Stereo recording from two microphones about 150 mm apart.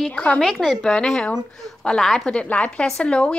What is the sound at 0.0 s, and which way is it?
A woman's voice, 10° left (ahead or behind).